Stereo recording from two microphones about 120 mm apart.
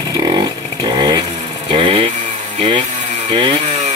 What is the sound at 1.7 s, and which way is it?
Motorcycle, 50° right (ahead or behind).